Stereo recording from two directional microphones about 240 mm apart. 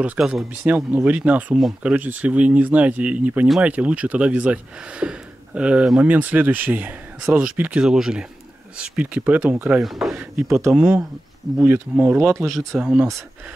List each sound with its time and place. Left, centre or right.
0.0 s speech: centre